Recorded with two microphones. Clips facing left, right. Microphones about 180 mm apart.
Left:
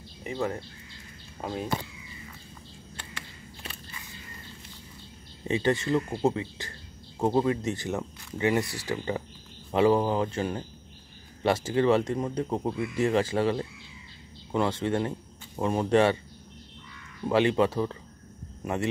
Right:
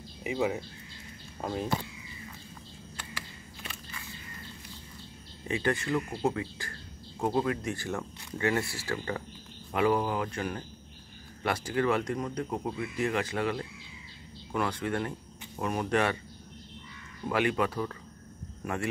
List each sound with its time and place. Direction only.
0.2 s speech: 10° right (ahead or behind)
5.5 s speech: 25° left (ahead or behind)
17.3 s speech: 25° left (ahead or behind)